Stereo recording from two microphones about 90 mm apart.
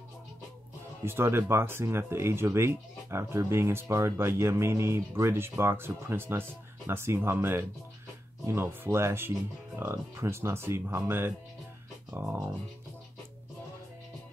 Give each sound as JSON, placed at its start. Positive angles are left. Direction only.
{"t": 1.0, "sound": "speech", "side_deg": -25}